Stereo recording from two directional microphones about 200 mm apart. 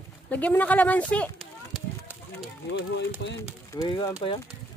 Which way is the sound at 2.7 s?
65° left (ahead or behind).